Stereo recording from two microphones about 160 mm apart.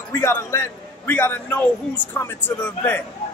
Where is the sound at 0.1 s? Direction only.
15° left (ahead or behind).